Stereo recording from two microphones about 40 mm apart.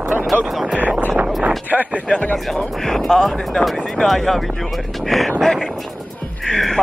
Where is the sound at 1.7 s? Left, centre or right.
Right.